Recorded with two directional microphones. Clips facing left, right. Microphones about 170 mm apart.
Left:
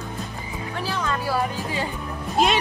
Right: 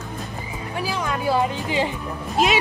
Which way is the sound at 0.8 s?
10° right (ahead or behind).